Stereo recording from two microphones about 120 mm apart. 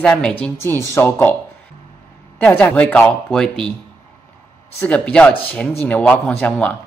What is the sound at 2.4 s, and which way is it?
Speech, 10° left (ahead or behind).